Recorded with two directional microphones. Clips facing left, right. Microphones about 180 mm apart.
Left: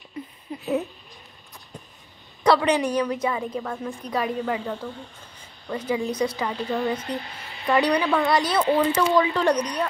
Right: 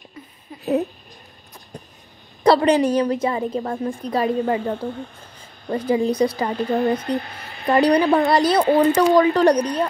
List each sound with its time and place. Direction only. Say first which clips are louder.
2.4 s a woman's voice: right 5 dB; 30° right (ahead or behind)
4.6 s a woman's voice: right 6 dB; 50° right (ahead or behind)
6.0 s a woman's voice: right 6 dB; 30° right (ahead or behind)
6.3 s a woman's voice: right 5 dB; 45° right (ahead or behind)